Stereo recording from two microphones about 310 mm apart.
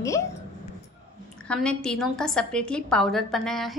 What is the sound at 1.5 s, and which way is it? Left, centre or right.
A woman's voice, centre.